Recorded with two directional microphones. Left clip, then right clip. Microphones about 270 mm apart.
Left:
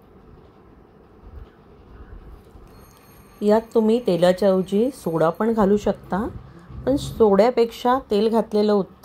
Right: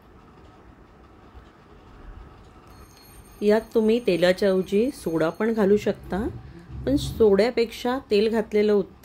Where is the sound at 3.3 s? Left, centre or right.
Centre.